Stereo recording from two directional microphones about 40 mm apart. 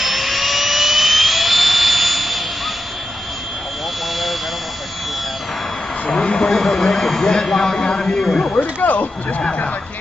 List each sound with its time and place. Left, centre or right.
0.0 s jet engine: centre
6.0 s a sound: left
6.6 s speech: centre
8.8 s speech: left